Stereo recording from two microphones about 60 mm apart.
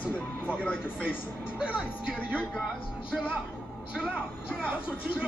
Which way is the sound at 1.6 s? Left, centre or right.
Centre.